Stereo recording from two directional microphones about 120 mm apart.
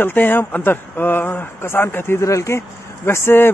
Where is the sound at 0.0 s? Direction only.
15° left (ahead or behind).